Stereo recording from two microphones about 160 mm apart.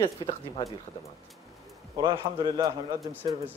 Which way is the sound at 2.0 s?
30° right (ahead or behind).